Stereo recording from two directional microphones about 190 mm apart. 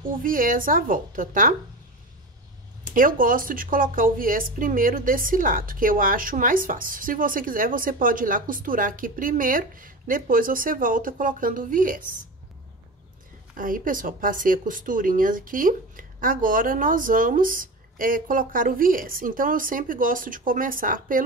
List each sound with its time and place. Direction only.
0.2 s speech: 45° right (ahead or behind)
2.9 s speech: 45° right (ahead or behind)
13.6 s speech: 45° right (ahead or behind)